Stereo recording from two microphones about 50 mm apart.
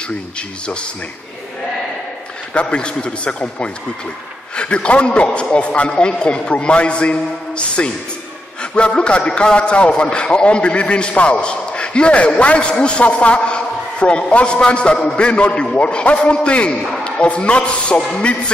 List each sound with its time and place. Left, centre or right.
2.5 s a man's voice: left